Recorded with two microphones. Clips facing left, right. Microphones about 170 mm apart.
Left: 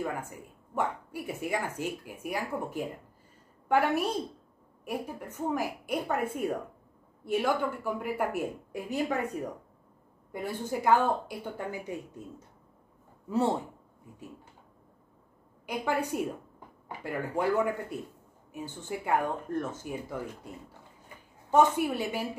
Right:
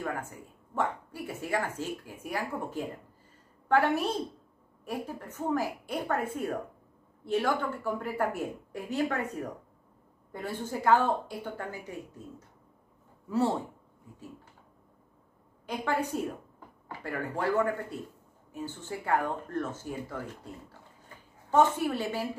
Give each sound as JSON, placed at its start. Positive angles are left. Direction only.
{"t": 0.0, "sound": "a woman's voice", "side_deg": 15}
{"t": 10.3, "sound": "speech", "side_deg": 15}
{"t": 15.6, "sound": "a woman's voice", "side_deg": 10}
{"t": 21.5, "sound": "speech", "side_deg": 15}